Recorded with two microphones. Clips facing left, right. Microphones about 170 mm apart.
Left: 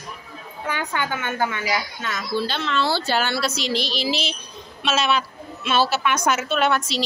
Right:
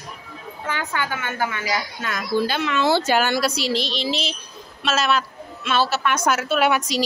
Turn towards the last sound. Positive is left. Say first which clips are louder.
# right 1 dB
turn(degrees=-10)  # may be behind; listen again after turning